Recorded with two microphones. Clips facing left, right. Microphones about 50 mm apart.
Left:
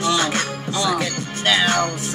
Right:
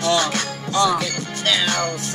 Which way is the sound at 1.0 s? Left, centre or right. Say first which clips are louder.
Left 1 dB; left.